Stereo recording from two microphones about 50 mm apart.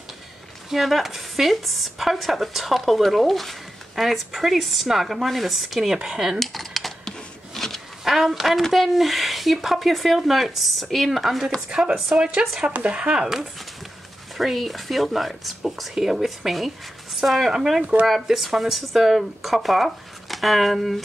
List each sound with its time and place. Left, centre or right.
0.7 s speech: centre
6.4 s computer keyboard: centre
8.0 s speech: centre
12.2 s speech: centre